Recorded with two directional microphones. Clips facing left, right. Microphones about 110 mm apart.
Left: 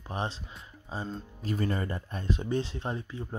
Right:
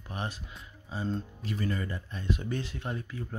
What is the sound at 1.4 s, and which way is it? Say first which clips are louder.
Speech: left 7 dB; 40° left (ahead or behind).